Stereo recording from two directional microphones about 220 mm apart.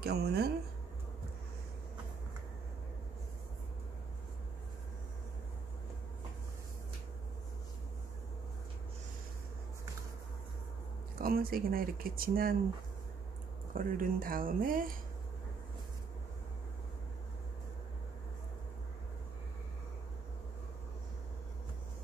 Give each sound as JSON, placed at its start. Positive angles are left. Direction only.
{"t": 0.0, "sound": "a sound", "side_deg": -45}
{"t": 11.1, "sound": "speech", "side_deg": -40}
{"t": 13.7, "sound": "speech", "side_deg": -40}